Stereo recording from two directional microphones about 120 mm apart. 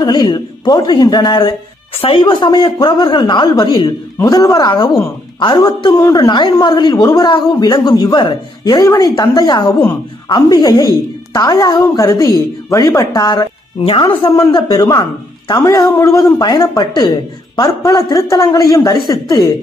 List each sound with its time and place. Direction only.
0.0 s speech: 35° left (ahead or behind)
2.0 s speech: 50° left (ahead or behind)
2.2 s speech: 40° left (ahead or behind)
14.3 s speech: 35° left (ahead or behind)